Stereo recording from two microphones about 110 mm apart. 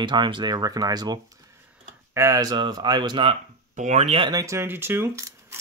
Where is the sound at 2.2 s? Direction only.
30° right (ahead or behind).